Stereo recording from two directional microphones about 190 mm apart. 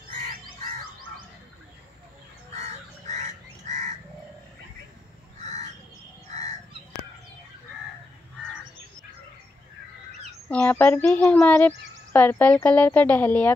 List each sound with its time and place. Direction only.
2.5 s crow: 40° right (ahead or behind)
10.5 s speech: 10° left (ahead or behind)